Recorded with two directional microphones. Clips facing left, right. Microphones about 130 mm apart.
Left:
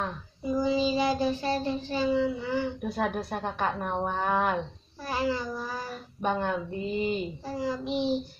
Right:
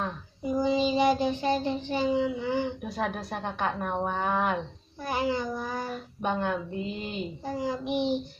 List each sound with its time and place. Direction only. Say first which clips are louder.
0.4 s child singing: right 1 dB; 20° right (ahead or behind)
2.9 s a woman's voice: left 2 dB; centre (ahead or behind)
5.0 s child singing: right 1 dB; 20° right (ahead or behind)
6.2 s a woman's voice: left 1 dB; centre (ahead or behind)
7.4 s child singing: right 3 dB; 20° right (ahead or behind)